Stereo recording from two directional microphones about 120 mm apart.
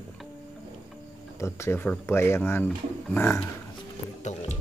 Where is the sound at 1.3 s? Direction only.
25° left (ahead or behind).